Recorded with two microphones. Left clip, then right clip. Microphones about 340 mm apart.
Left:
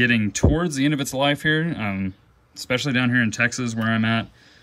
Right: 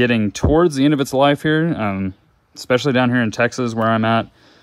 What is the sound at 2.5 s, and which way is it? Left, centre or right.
Speech, centre.